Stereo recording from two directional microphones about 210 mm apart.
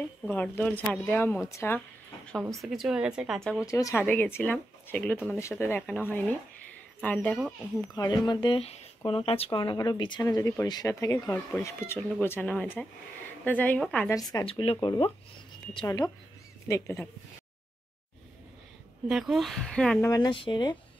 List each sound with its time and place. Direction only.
0.2 s speech: 10° left (ahead or behind)
2.6 s speech: centre (ahead or behind)
3.6 s speech: 15° left (ahead or behind)
14.3 s speech: 25° left (ahead or behind)
19.0 s speech: centre (ahead or behind)
20.1 s speech: 20° left (ahead or behind)